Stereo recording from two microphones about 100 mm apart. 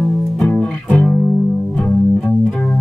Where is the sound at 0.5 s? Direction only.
10° left (ahead or behind).